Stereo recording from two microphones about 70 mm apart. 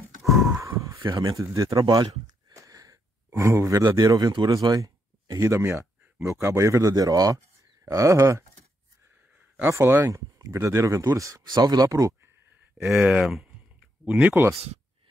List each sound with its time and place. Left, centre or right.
0.2 s a sound: centre
0.6 s a sound: right
1.0 s speech: right
1.3 s speech: right
2.5 s wheeze: right
3.3 s speech: right
4.0 s speech: right
5.4 s speech: right
7.9 s speech: right
9.7 s speech: right
11.4 s speech: right
11.9 s speech: right
12.8 s speech: centre
14.0 s speech: right